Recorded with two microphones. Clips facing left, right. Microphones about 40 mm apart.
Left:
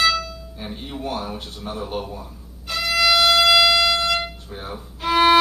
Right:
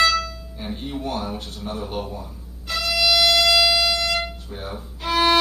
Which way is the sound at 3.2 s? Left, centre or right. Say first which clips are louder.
Left 3 dB; left.